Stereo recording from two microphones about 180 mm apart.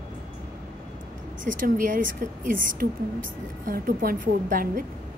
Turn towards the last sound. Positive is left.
turn(degrees=-50)  # may be behind; listen again after turning